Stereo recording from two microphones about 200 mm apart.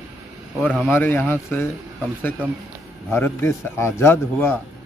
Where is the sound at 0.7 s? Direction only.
Centre (ahead or behind).